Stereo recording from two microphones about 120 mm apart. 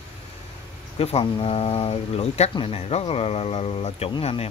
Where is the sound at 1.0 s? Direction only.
50° left (ahead or behind).